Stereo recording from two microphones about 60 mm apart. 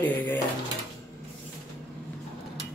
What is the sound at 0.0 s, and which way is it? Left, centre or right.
Drawer open or close, left.